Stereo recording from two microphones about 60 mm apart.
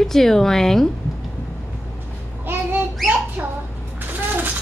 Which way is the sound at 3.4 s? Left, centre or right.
Right.